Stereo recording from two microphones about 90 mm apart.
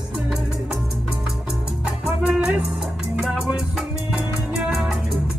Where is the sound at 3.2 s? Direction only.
10° right (ahead or behind).